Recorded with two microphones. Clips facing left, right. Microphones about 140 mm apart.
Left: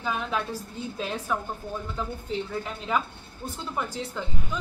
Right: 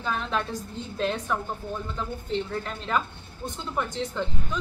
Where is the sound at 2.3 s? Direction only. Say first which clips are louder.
Right 2 dB; 5° left (ahead or behind).